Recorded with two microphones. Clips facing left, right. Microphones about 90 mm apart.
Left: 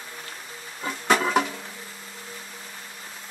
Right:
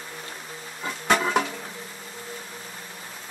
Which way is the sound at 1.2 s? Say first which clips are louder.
Left 1 dB; centre (ahead or behind).